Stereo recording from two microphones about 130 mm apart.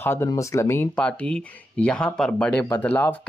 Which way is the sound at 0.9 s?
10° left (ahead or behind).